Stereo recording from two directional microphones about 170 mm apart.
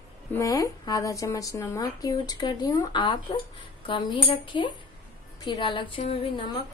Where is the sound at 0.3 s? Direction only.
20° left (ahead or behind).